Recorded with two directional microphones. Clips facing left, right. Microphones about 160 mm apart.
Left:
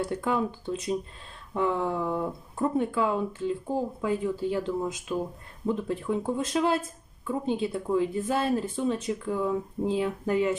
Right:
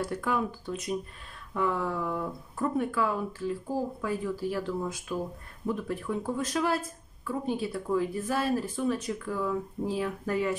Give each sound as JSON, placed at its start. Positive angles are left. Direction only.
{"t": 0.0, "sound": "speech", "side_deg": 25}